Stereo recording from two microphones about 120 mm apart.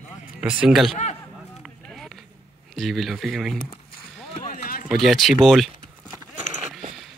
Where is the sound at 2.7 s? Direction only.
Centre (ahead or behind).